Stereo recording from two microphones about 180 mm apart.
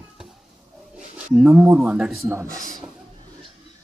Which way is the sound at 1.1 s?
5° right (ahead or behind).